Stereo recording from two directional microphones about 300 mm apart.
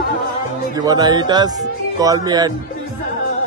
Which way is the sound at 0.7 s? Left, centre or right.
Centre.